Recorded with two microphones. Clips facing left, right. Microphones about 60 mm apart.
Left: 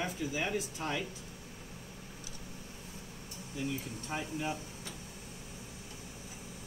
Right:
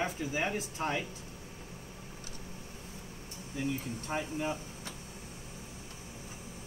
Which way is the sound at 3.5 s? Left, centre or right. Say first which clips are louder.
Right 3 dB; right.